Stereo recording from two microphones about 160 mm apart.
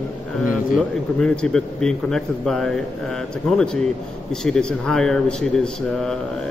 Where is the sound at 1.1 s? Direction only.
5° left (ahead or behind).